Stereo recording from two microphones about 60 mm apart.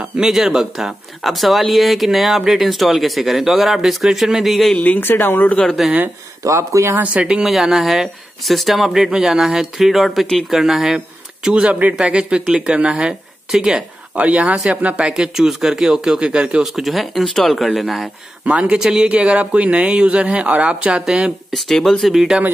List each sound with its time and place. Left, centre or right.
0.2 s speech: centre
4.7 s speech: left
5.0 s speech: left
5.5 s speech: centre
6.4 s speech: right
7.0 s speech: right
7.4 s speech: centre
14.1 s speech: right
16.6 s speech: centre
18.4 s speech: centre
21.5 s speech: centre
22.1 s speech: centre